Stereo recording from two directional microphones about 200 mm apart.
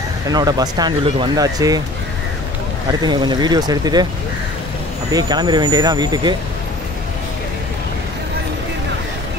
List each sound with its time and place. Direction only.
0.3 s speech: 20° right (ahead or behind)
2.9 s speech: 20° right (ahead or behind)
5.1 s speech: 20° right (ahead or behind)